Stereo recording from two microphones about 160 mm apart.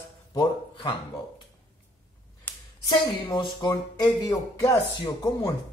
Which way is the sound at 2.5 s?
10° left (ahead or behind).